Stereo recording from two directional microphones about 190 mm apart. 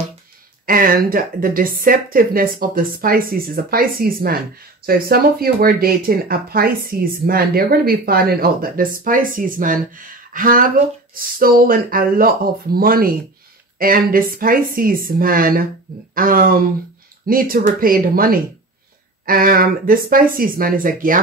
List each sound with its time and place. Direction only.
0.7 s speech: 50° right (ahead or behind)